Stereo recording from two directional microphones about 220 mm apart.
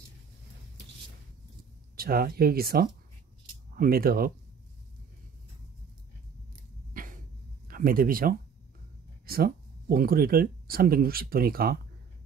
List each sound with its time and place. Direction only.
2.0 s speech: 45° right (ahead or behind)
6.9 s a sound: 40° right (ahead or behind)
7.6 s speech: 40° right (ahead or behind)